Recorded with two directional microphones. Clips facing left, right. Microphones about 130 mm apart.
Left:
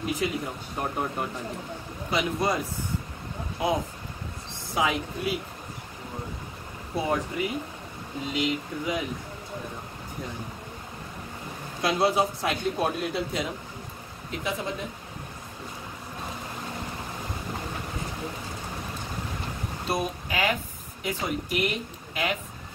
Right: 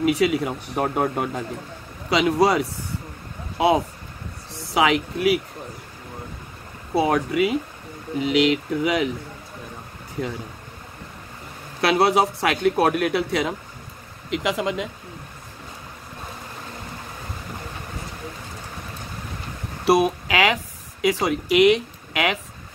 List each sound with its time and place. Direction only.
0.0 s speech: 80° right
2.0 s speech: 90° right
7.0 s speech: 90° right
8.2 s speech: 80° right
10.2 s speech: 75° right (ahead or behind)
11.8 s speech: 70° right (ahead or behind); by 14.9 s 90° right
19.8 s speech: 80° right